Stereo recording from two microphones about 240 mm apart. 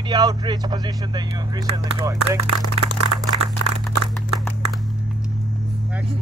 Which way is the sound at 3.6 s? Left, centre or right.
Right.